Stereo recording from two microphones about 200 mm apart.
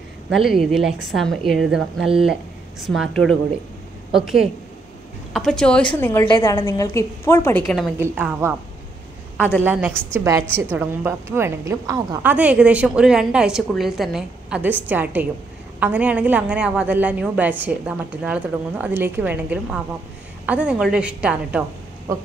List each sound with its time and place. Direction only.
0.3 s a woman's voice: centre (ahead or behind)
4.1 s a woman's voice: centre (ahead or behind)
8.0 s a woman's voice: 10° right (ahead or behind)
9.7 s a woman's voice: 5° right (ahead or behind)